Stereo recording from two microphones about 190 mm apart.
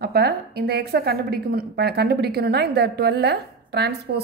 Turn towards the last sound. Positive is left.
turn(degrees=-60)  # may be behind; listen again after turning